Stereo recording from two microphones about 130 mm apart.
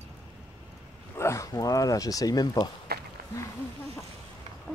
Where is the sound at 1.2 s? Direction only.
20° left (ahead or behind).